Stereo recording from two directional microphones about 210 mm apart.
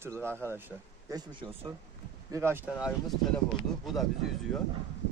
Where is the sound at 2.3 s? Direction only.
10° right (ahead or behind).